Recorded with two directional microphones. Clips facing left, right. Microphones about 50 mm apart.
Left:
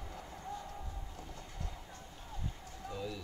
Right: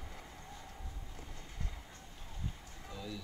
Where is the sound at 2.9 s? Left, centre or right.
Centre.